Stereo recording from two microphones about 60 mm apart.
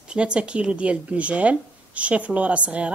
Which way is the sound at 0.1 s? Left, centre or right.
Centre.